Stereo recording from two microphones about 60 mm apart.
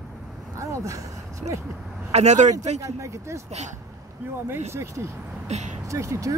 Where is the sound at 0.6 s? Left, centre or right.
Right.